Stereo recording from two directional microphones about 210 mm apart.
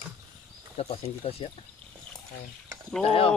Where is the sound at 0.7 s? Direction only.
30° left (ahead or behind).